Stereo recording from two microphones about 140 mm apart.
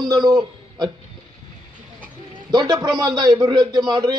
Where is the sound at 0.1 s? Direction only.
30° right (ahead or behind).